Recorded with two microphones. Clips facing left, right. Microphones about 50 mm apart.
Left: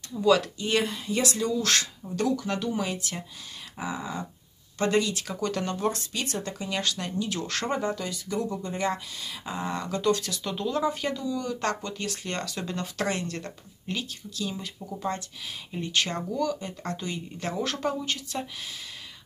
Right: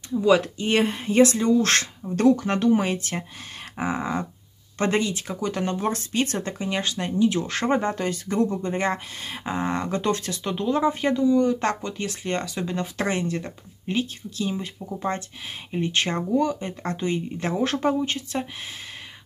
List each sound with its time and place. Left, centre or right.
0.1 s speech: right
3.7 s dog: right
4.7 s speech: right
13.9 s speech: right